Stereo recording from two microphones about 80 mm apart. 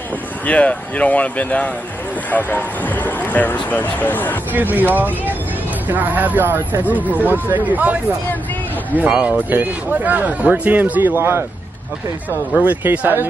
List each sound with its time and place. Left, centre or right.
0.5 s speech: centre
4.5 s a man's voice: right
9.1 s speech: centre
9.5 s a man's voice: right
12.5 s a man's voice: right